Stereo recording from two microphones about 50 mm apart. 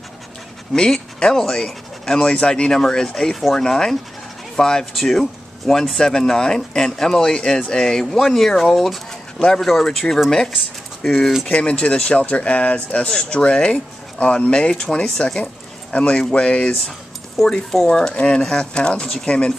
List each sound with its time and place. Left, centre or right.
0.7 s speech: centre
17.4 s speech: centre